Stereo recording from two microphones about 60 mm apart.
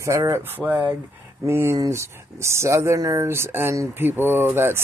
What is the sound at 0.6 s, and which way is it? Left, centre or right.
Speech, right.